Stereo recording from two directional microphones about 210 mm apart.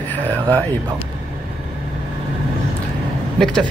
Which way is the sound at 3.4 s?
5° left (ahead or behind).